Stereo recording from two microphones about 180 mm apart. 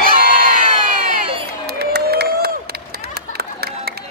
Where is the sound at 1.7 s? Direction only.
65° right (ahead or behind).